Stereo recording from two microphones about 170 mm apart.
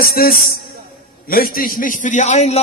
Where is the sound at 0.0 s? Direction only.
60° left (ahead or behind).